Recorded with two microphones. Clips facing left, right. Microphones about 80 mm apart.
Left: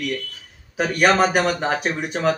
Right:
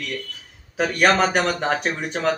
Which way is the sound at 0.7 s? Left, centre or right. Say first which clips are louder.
Left 1 dB; centre.